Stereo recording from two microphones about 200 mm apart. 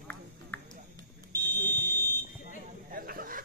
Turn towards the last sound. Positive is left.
turn(degrees=-45)  # may be behind; listen again after turning